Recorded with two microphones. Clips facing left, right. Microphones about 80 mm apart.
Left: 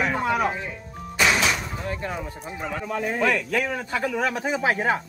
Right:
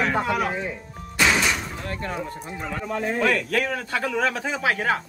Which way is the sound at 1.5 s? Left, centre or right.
Centre.